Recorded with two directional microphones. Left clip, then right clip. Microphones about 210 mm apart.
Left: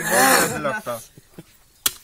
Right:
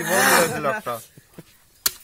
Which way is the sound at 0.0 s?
30° left (ahead or behind).